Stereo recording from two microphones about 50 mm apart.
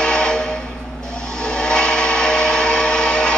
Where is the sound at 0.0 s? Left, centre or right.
Centre.